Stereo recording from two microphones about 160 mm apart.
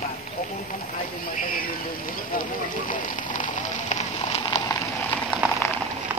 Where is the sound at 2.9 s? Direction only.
55° left (ahead or behind).